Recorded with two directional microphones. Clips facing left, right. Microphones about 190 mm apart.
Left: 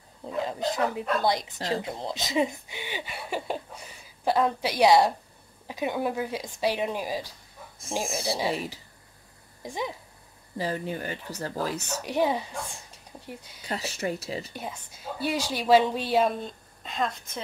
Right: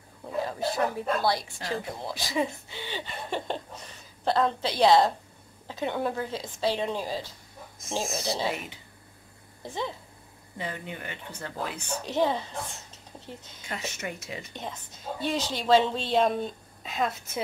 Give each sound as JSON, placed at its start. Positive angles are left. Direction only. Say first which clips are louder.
{"t": 0.2, "sound": "speech", "louder": "left 1 dB", "side_deg": 20}
{"t": 9.6, "sound": "a woman's voice", "louder": "left 1 dB", "side_deg": 15}
{"t": 10.6, "sound": "speech", "louder": "left 6 dB", "side_deg": 35}
{"t": 12.0, "sound": "speech", "louder": "even", "side_deg": 10}
{"t": 13.6, "sound": "speech", "louder": "left 5 dB", "side_deg": 35}
{"t": 14.5, "sound": "speech", "louder": "left 1 dB", "side_deg": 10}